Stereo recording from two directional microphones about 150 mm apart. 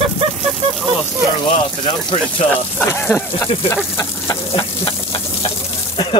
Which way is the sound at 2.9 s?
15° left (ahead or behind).